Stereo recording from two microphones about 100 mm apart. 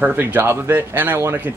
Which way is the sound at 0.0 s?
15° right (ahead or behind).